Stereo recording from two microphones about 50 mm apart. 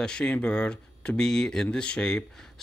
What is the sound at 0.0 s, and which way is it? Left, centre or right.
Speech, centre.